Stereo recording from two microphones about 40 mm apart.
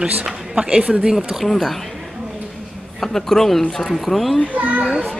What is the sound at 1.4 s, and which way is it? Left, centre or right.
Speech, centre.